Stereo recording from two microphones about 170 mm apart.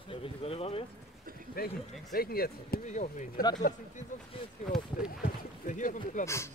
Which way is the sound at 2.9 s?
45° left (ahead or behind).